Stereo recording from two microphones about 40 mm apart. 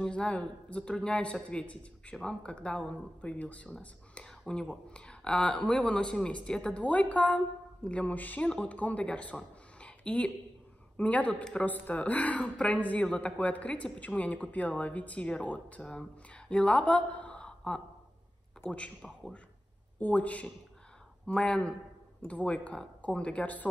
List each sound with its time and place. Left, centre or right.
0.0 s speech: left
17.5 s a sound: left
20.0 s speech: left
21.4 s speech: left
22.3 s speech: left